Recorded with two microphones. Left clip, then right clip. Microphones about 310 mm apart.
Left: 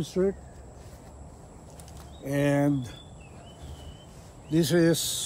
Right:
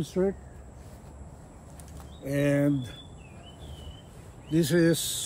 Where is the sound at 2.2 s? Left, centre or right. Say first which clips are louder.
Even; centre.